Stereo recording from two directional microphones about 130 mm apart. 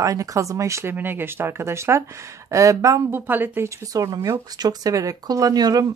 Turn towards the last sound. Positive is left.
turn(degrees=-30)  # may be behind; listen again after turning